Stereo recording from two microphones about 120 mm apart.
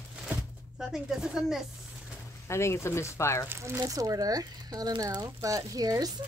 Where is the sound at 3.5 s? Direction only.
20° right (ahead or behind).